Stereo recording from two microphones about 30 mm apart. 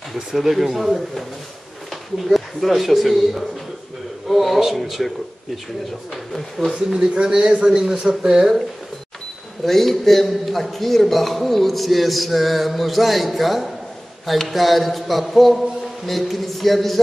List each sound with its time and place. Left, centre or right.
0.3 s a man's voice: centre
2.2 s a man's voice: centre
6.9 s speech: right
8.4 s speech: centre
9.7 s a man's voice: centre